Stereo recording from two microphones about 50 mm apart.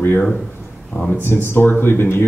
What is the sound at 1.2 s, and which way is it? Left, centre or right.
Speech, left.